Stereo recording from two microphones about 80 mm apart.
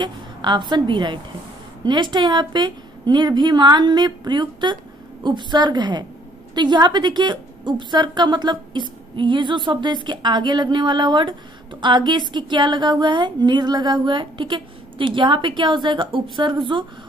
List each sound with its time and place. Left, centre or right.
0.0 s a woman's voice: right